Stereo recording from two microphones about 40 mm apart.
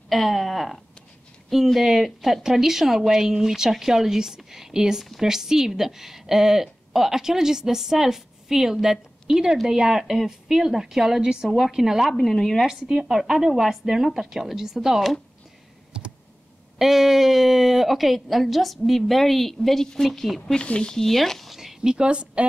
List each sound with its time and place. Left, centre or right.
0.1 s a woman's voice: centre
12.1 s speech: centre
12.9 s speech: centre
15.9 s computer keyboard: right
16.7 s speech: centre
20.5 s speech: left
20.9 s speech: centre
21.5 s a sound: centre
21.9 s speech: right